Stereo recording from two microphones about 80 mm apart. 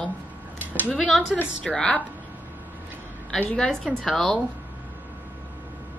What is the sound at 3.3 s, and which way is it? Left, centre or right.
Speech, centre.